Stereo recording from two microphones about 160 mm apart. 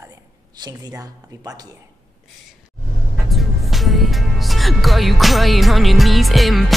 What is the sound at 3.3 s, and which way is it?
Speech, centre (ahead or behind).